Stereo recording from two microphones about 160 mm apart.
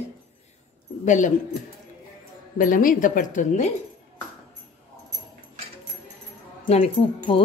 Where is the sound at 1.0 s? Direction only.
50° left (ahead or behind).